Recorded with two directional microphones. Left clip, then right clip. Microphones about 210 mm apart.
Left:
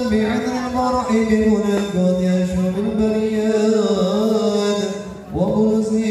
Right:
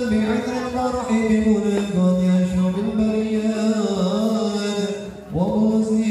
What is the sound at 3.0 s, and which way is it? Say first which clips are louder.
Music: left 4 dB; 20° left (ahead or behind).